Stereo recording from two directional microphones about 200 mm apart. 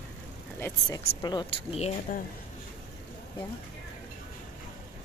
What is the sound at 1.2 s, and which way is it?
Speech, 25° left (ahead or behind).